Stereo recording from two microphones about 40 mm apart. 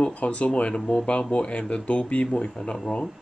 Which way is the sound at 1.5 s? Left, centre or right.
Left.